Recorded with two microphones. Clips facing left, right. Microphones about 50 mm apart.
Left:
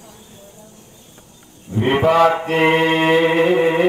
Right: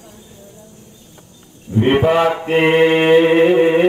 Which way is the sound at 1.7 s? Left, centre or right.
Left.